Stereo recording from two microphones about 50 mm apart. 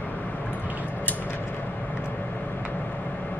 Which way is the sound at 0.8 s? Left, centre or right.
Left.